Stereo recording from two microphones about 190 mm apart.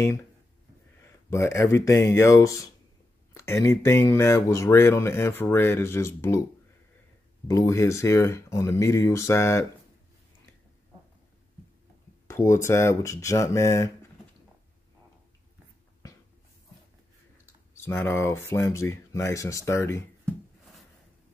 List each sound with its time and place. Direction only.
0.0 s speech: 15° left (ahead or behind)
1.3 s speech: 15° left (ahead or behind)
7.4 s speech: 15° left (ahead or behind)
12.3 s speech: 15° left (ahead or behind)
17.8 s speech: 10° left (ahead or behind)